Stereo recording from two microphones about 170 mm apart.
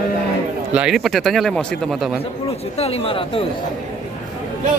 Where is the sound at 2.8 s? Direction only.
35° left (ahead or behind).